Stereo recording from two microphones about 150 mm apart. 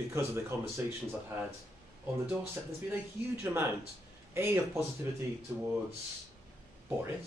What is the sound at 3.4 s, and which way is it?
Speech, 15° right (ahead or behind).